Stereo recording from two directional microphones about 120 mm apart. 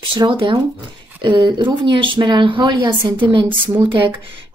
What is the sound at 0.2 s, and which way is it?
A woman's voice, 45° right (ahead or behind).